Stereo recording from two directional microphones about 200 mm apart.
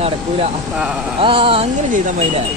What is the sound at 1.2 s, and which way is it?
Speech, 25° right (ahead or behind).